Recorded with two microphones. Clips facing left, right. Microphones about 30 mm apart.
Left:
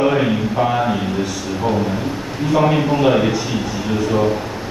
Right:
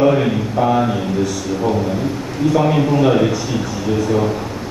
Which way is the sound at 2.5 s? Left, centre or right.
Centre.